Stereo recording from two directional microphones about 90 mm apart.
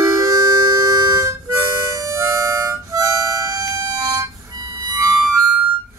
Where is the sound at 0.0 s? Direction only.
40° right (ahead or behind).